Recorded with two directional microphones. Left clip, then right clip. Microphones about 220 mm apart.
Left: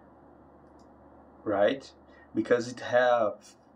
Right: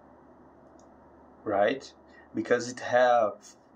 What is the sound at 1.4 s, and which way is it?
Speech, 10° right (ahead or behind).